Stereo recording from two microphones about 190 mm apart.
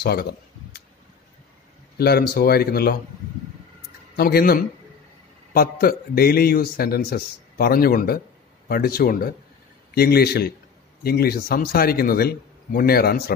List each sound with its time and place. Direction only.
0.0 s a sound: 55° left (ahead or behind)
2.0 s speech: 55° left (ahead or behind)
4.2 s a man's voice: 55° left (ahead or behind)